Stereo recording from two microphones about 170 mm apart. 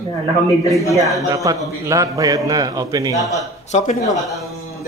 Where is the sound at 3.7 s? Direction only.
40° left (ahead or behind).